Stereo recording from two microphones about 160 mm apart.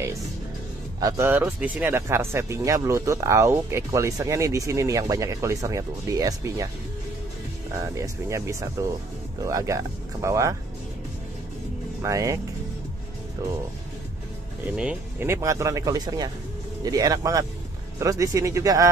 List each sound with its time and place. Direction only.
1.0 s speech: 15° right (ahead or behind)
7.7 s speech: 20° right (ahead or behind)
12.0 s speech: 20° right (ahead or behind)
14.8 s speech: 10° right (ahead or behind)